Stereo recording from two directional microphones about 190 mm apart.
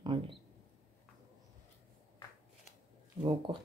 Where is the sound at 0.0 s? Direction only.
25° right (ahead or behind).